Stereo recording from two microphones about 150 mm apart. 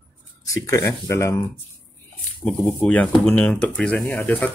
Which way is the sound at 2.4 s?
10° left (ahead or behind).